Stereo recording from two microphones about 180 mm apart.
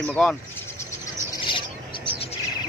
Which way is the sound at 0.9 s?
25° left (ahead or behind).